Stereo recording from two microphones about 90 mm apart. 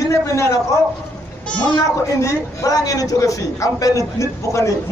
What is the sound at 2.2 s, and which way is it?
A man's voice, 40° left (ahead or behind).